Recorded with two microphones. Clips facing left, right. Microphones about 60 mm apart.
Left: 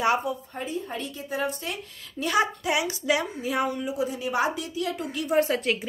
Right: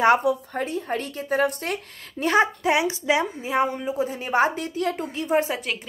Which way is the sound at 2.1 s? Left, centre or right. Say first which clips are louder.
Right 4 dB; right.